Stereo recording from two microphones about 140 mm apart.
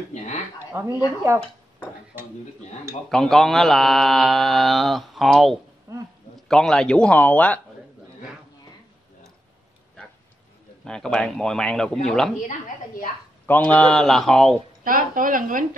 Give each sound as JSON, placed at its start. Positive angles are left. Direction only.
{"t": 0.7, "sound": "speech", "side_deg": -20}
{"t": 3.1, "sound": "speech", "side_deg": 0}
{"t": 5.9, "sound": "a sound", "side_deg": -20}
{"t": 6.5, "sound": "a man's voice", "side_deg": 5}
{"t": 10.8, "sound": "speech", "side_deg": 5}
{"t": 13.5, "sound": "speech", "side_deg": 10}
{"t": 14.9, "sound": "speech", "side_deg": -80}